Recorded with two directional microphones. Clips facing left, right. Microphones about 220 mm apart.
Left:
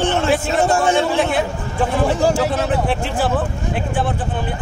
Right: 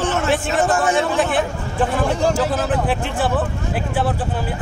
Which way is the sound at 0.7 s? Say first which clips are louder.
Left 3 dB; 25° left (ahead or behind).